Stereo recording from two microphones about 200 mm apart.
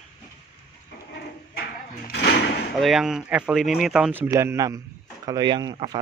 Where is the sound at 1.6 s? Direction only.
50° left (ahead or behind).